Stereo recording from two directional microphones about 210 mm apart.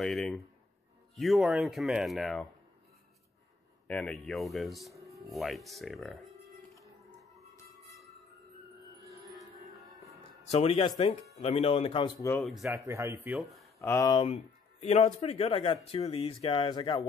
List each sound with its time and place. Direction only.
0.0 s speech: centre (ahead or behind)
3.8 s speech: 5° left (ahead or behind)
7.0 s music: centre (ahead or behind)
9.0 s music: 15° right (ahead or behind)
10.5 s speech: 30° left (ahead or behind)
12.4 s speech: centre (ahead or behind)
12.6 s speech: 15° right (ahead or behind)
13.7 s speech: 15° left (ahead or behind)
14.3 s speech: 30° left (ahead or behind)